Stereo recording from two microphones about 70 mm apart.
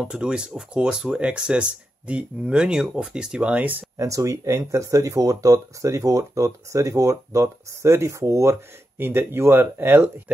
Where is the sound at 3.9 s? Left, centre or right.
Right.